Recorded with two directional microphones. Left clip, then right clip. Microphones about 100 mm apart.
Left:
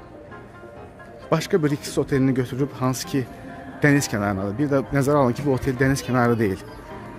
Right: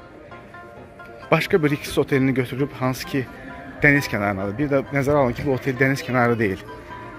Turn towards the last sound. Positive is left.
turn(degrees=20)  # may be behind; listen again after turning